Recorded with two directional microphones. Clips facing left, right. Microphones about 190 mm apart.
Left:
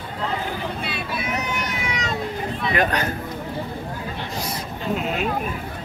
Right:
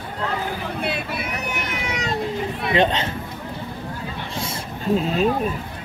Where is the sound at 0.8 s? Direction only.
55° right (ahead or behind).